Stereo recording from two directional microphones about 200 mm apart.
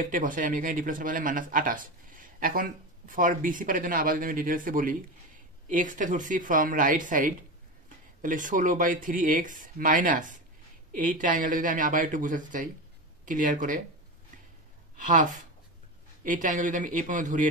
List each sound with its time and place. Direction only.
0.1 s speech: 40° right (ahead or behind)
15.1 s speech: 40° right (ahead or behind)